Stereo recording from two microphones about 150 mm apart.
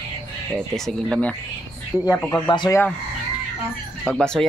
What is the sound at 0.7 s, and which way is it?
Speech, centre (ahead or behind).